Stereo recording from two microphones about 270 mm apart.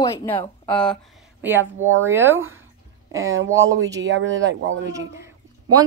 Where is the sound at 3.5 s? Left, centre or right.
Centre.